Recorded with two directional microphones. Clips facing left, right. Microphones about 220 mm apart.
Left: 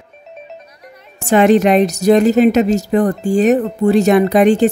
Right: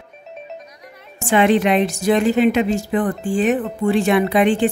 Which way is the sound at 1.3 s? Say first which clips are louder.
Left 5 dB; 40° left (ahead or behind).